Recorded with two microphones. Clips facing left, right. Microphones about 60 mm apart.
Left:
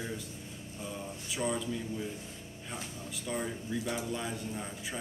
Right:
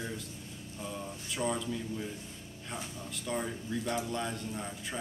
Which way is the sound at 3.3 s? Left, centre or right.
Centre.